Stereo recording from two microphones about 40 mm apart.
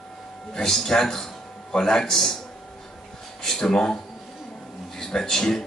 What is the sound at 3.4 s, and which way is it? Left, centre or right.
Speech, centre.